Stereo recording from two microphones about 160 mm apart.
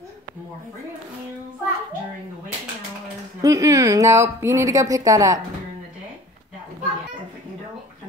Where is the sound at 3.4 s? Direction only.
20° right (ahead or behind).